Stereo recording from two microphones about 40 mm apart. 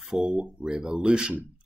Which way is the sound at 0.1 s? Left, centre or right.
Centre.